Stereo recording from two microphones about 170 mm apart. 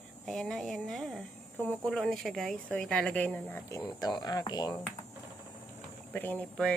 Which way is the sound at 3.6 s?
20° left (ahead or behind).